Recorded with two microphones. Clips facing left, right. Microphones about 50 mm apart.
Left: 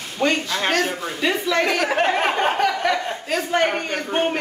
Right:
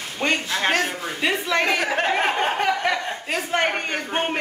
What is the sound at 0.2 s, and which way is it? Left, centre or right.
A woman's voice, right.